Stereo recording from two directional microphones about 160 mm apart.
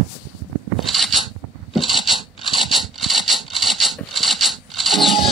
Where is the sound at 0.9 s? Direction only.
Centre (ahead or behind).